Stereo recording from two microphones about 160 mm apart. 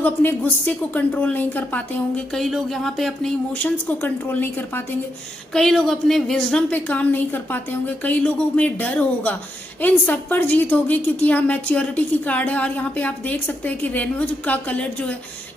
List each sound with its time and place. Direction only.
0.0 s a woman's voice: 10° left (ahead or behind)